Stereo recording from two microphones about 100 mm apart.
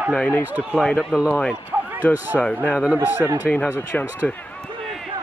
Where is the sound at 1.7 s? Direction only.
20° right (ahead or behind).